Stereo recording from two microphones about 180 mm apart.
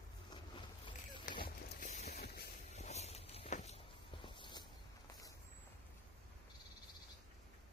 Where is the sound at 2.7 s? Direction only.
35° left (ahead or behind).